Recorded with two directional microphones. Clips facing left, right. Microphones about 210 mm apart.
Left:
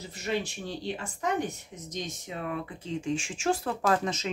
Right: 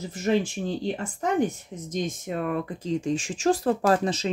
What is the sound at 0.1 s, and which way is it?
Speech, 50° right (ahead or behind).